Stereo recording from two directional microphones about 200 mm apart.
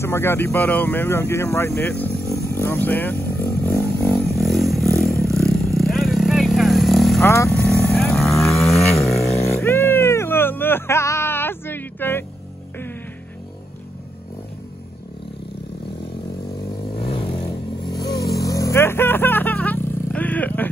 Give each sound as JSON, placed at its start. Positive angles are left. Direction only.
{"t": 0.0, "sound": "speech", "side_deg": 10}
{"t": 2.5, "sound": "vehicle", "side_deg": 10}
{"t": 4.3, "sound": "vehicle", "side_deg": 0}
{"t": 7.2, "sound": "vehicle", "side_deg": 15}
{"t": 8.4, "sound": "roaring cats", "side_deg": 0}
{"t": 9.6, "sound": "cat", "side_deg": 10}
{"t": 18.0, "sound": "vehicle", "side_deg": 55}
{"t": 18.3, "sound": "vehicle", "side_deg": 15}